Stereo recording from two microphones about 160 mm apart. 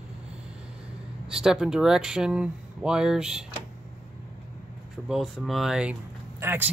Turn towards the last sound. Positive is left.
turn(degrees=-15)  # may be behind; listen again after turning